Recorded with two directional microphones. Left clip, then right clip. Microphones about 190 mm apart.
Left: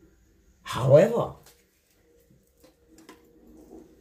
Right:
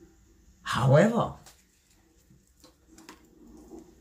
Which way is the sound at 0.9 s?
15° left (ahead or behind).